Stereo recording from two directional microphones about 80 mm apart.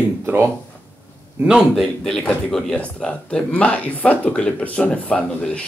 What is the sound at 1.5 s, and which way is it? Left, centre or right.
Speech, centre.